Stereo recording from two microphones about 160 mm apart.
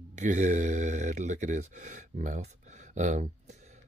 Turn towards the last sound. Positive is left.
turn(degrees=-45)  # may be behind; listen again after turning